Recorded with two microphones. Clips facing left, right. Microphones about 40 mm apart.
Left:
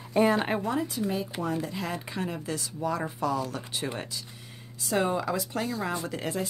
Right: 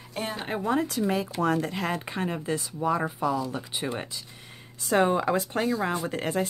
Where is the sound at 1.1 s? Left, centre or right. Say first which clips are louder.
Right 5 dB; right; by 3.9 s centre.